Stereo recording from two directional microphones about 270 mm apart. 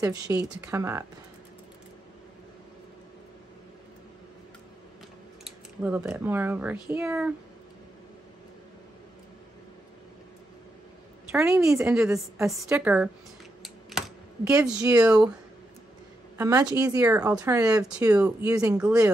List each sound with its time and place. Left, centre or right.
0.0 s speech: centre
5.4 s speech: centre
11.3 s a woman's voice: centre
13.6 s typing: centre
16.3 s a woman's voice: centre